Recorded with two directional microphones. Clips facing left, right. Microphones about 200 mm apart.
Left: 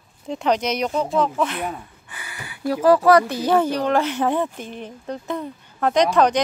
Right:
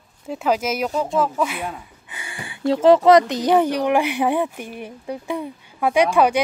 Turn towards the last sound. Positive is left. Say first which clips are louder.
# right 1 dB
turn(degrees=-10)  # may be behind; listen again after turning